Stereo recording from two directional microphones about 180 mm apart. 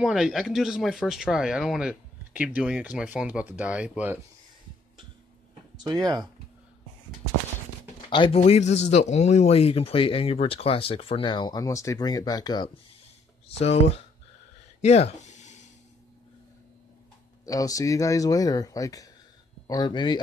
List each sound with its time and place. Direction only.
0.0 s speech: centre (ahead or behind)
8.1 s speech: 30° left (ahead or behind)
13.5 s speech: 35° left (ahead or behind)
14.8 s a sound: 35° left (ahead or behind)
17.5 s speech: 20° left (ahead or behind)